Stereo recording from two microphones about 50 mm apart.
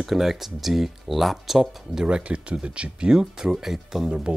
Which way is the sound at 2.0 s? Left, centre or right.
Right.